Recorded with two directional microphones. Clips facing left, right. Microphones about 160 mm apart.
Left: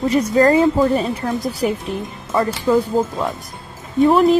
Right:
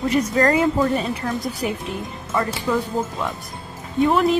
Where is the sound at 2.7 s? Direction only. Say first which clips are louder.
Left 7 dB; 40° left (ahead or behind).